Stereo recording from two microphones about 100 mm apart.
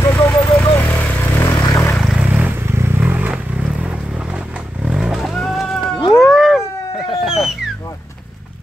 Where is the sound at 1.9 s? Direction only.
Centre (ahead or behind).